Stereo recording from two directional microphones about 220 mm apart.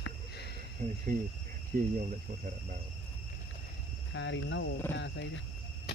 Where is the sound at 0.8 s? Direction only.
35° right (ahead or behind).